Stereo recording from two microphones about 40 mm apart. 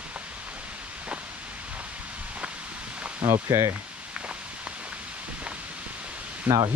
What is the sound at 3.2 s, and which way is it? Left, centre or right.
Speech, right.